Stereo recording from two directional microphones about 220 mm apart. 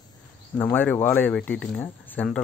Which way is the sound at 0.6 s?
10° left (ahead or behind).